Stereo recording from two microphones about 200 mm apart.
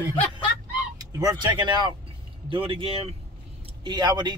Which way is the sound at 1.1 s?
20° right (ahead or behind).